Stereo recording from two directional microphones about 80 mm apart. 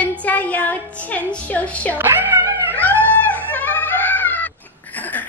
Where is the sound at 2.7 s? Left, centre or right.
Left.